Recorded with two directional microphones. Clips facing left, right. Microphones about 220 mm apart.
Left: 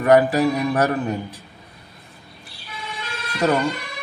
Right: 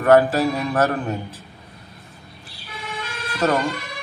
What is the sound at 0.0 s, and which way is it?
Speech, 10° left (ahead or behind).